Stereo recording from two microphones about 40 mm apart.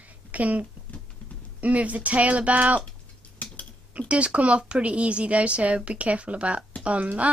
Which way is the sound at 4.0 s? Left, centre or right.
Right.